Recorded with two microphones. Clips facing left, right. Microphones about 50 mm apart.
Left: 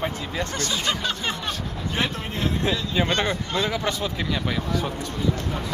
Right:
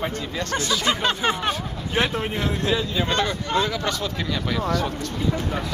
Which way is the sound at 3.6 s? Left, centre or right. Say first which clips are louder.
Even; centre.